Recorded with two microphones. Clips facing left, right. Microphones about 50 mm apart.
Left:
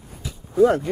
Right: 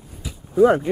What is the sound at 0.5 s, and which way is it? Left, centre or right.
Speech, centre.